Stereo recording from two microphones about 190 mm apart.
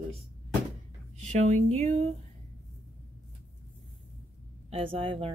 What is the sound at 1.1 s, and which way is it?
Speech, 40° right (ahead or behind).